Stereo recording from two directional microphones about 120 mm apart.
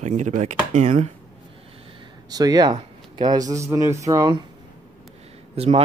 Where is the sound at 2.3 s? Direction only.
30° right (ahead or behind).